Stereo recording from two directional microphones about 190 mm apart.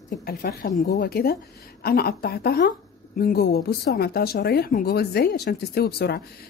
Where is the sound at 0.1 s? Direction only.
50° left (ahead or behind).